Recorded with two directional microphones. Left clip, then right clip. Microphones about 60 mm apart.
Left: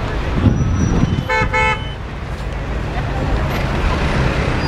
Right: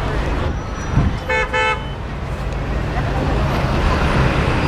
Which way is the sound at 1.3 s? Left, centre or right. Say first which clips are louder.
Left 1 dB; left.